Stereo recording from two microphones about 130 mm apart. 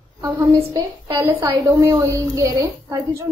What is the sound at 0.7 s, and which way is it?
A woman's voice, 25° right (ahead or behind).